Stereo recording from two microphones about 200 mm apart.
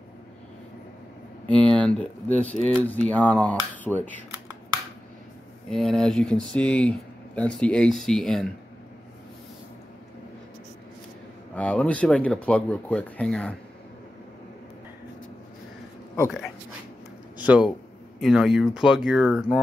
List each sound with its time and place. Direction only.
1.6 s a sound: 25° right (ahead or behind)
1.9 s speech: 5° left (ahead or behind)
5.7 s speech: centre (ahead or behind)
11.5 s speech: 5° left (ahead or behind)
16.3 s speech: centre (ahead or behind)